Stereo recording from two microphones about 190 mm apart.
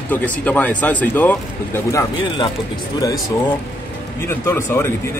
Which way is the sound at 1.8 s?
20° left (ahead or behind).